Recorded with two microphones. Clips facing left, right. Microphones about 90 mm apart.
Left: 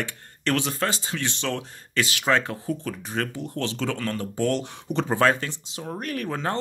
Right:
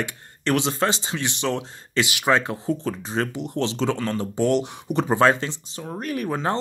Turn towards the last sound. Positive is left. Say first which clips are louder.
# right 3 dB
turn(degrees=-15)  # may be behind; listen again after turning